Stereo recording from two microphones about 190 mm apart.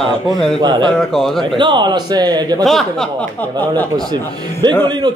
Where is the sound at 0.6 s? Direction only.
25° right (ahead or behind).